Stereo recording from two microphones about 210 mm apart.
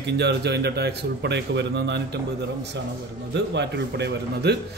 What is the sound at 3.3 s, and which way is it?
Speech, 55° right (ahead or behind).